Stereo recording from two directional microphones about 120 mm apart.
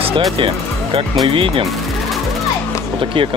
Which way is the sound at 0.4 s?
50° right (ahead or behind).